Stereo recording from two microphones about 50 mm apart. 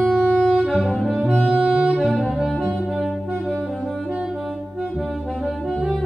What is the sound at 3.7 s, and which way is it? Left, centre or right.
Music, centre.